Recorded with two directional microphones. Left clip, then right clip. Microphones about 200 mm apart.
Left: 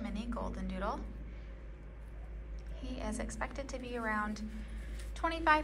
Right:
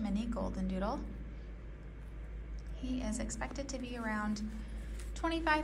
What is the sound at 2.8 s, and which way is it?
A woman's voice, 10° right (ahead or behind).